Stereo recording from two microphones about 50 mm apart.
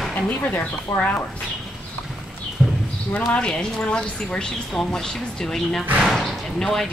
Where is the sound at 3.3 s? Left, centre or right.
Centre.